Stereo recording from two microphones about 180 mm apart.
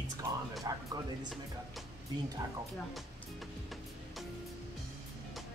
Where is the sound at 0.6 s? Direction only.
20° right (ahead or behind).